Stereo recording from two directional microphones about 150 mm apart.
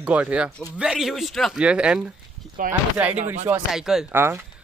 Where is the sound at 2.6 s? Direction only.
65° right (ahead or behind).